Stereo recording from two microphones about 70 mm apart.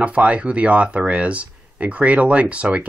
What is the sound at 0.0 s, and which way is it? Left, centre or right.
Speech, centre.